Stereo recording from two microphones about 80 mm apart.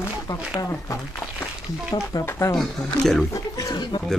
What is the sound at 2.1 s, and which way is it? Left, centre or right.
Speech, left.